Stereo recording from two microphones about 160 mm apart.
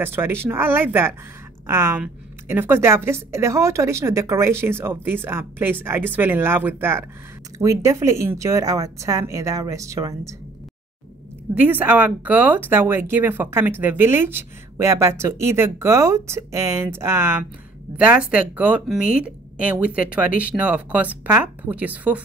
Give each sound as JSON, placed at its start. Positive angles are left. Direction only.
{"t": 0.0, "sound": "speech", "side_deg": -15}
{"t": 11.6, "sound": "speech", "side_deg": -10}